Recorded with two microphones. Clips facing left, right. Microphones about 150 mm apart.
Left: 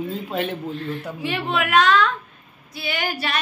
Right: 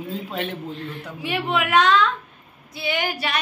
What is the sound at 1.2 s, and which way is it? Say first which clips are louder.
A woman's voice: right 1 dB; 15° right (ahead or behind).